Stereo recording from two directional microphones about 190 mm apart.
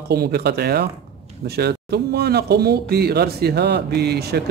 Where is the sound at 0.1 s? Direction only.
55° right (ahead or behind).